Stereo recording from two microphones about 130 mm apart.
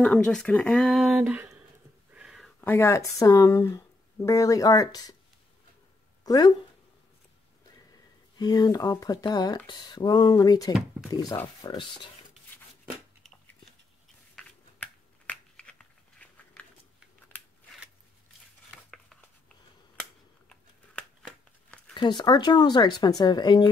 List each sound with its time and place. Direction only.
0.0 s speech: 5° left (ahead or behind)
1.1 s speech: 10° right (ahead or behind)
2.1 s a sound: 5° right (ahead or behind)
2.6 s speech: 20° left (ahead or behind)
6.2 s speech: 30° left (ahead or behind)
8.4 s speech: 30° left (ahead or behind)
14.3 s a sound: 10° left (ahead or behind)
20.4 s a sound: 5° left (ahead or behind)
21.9 s speech: 35° left (ahead or behind)